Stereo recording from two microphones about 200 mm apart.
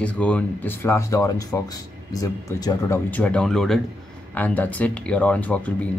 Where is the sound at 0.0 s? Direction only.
5° left (ahead or behind).